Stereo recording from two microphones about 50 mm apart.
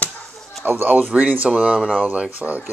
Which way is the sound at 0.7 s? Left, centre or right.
Right.